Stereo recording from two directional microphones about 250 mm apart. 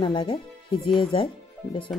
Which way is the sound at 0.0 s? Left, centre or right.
Centre.